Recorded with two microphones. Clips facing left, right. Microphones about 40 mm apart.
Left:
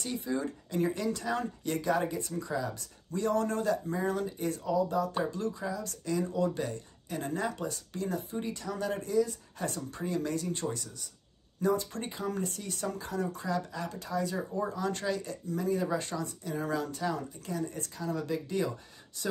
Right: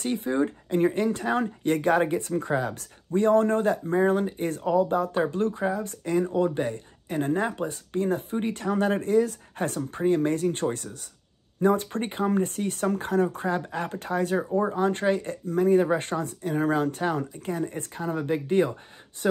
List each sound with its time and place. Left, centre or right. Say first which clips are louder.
0.0 s speech: right 8 dB; right
3.1 s speech: right 9 dB; right